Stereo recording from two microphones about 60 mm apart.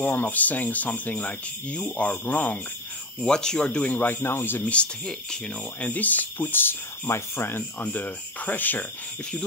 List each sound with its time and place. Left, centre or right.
0.0 s speech: left
3.2 s speech: centre
3.8 s speech: left
5.8 s speech: left
7.8 s speech: left